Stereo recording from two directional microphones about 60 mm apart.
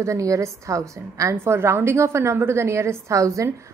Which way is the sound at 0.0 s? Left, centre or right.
Right.